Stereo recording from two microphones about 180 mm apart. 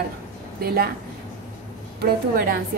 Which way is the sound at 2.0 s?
55° right (ahead or behind).